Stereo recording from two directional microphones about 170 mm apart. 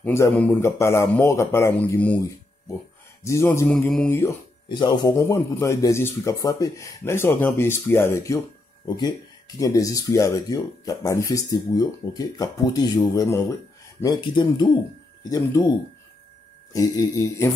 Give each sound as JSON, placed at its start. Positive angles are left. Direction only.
{"t": 0.0, "sound": "a man's voice", "side_deg": 10}
{"t": 4.6, "sound": "a man's voice", "side_deg": 30}
{"t": 16.7, "sound": "speech", "side_deg": 20}